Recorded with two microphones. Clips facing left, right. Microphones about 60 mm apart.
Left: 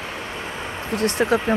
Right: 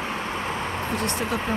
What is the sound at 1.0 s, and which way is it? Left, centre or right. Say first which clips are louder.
Speech: left 11 dB; left.